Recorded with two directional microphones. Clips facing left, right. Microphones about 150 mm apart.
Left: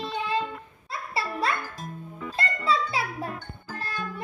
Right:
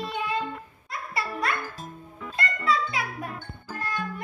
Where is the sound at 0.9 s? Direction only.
30° left (ahead or behind).